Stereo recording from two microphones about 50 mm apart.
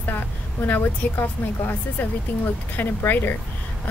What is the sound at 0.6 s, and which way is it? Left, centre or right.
Speech, left.